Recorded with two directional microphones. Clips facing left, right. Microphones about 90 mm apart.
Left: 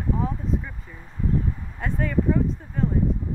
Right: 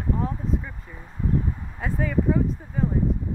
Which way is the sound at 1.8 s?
5° right (ahead or behind).